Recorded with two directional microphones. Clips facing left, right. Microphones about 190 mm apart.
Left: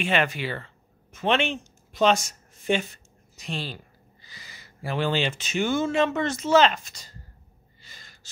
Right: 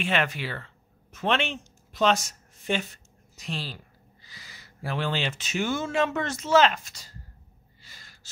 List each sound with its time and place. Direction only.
0.0 s speech: centre (ahead or behind)
7.8 s gasp: 5° right (ahead or behind)